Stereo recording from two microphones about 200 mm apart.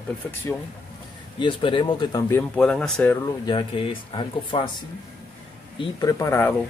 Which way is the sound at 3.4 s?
25° left (ahead or behind).